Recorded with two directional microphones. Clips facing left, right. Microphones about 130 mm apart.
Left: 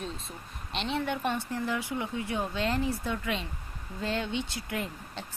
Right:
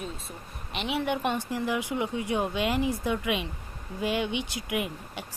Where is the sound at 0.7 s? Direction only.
10° right (ahead or behind).